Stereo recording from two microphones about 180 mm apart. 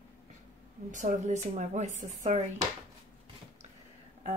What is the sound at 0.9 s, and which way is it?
Speech, 40° right (ahead or behind).